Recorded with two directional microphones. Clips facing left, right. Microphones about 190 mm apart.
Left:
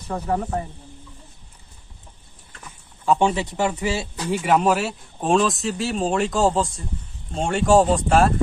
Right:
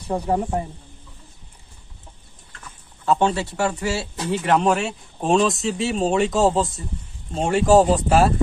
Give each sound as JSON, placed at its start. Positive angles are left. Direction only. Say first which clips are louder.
{"t": 0.1, "sound": "speech", "louder": "right 2 dB", "side_deg": -15}
{"t": 3.1, "sound": "speech", "louder": "even", "side_deg": 15}